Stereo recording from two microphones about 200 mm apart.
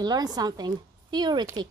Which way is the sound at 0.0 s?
20° right (ahead or behind).